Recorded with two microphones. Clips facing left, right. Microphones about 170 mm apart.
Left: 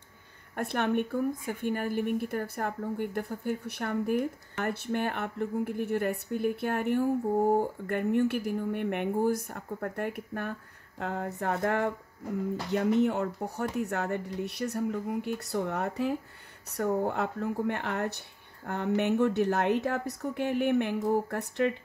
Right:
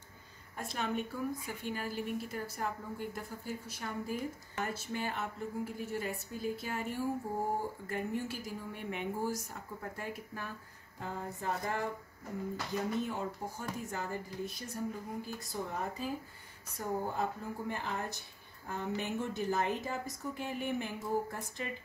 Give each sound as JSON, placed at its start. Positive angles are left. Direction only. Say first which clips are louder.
{"t": 0.6, "sound": "a woman's voice", "louder": "left 8 dB", "side_deg": 60}